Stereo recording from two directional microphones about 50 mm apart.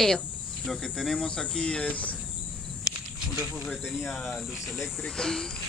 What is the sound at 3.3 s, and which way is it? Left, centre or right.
Speech, right.